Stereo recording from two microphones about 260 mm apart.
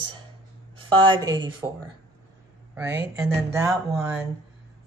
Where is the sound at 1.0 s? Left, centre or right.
Centre.